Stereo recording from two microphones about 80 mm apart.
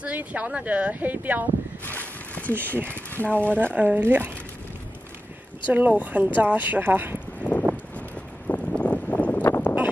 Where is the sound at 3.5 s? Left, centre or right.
Centre.